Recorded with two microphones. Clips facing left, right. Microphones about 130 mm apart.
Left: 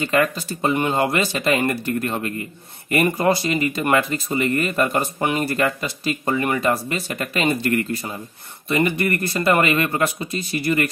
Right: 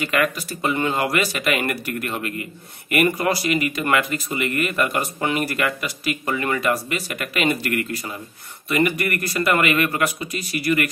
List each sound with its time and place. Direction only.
0.0 s speech: 30° left (ahead or behind)